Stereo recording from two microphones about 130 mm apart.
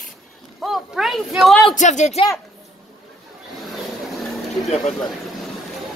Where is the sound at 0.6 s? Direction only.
Centre (ahead or behind).